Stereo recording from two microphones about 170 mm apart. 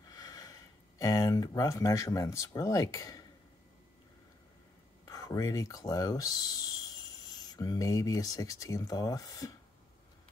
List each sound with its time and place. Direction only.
0.1 s speech: 20° left (ahead or behind)
5.0 s speech: 20° left (ahead or behind)